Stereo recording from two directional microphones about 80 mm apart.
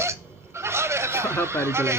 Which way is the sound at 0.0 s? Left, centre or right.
Right.